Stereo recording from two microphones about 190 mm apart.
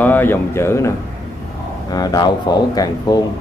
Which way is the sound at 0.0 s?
10° left (ahead or behind).